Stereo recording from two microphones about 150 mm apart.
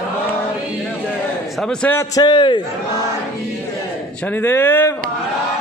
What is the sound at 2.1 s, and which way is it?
Speech, 30° left (ahead or behind).